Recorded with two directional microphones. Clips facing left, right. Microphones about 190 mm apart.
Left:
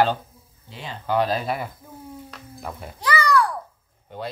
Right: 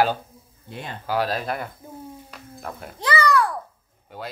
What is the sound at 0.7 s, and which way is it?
Speech, 55° right (ahead or behind).